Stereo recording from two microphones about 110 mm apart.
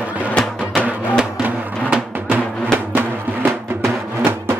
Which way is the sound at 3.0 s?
20° right (ahead or behind).